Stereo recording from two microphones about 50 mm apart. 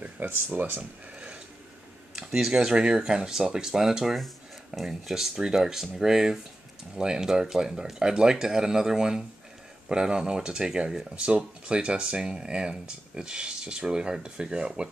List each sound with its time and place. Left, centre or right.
0.0 s speech: right
1.1 s a sound: right
2.1 s speech: centre
11.1 s speech: right